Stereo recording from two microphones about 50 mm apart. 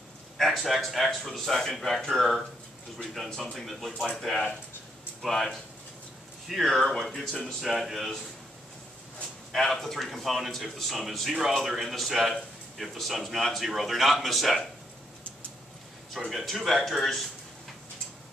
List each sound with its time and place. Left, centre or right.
0.4 s speech: centre
3.5 s speech: centre
9.5 s speech: centre
16.1 s speech: centre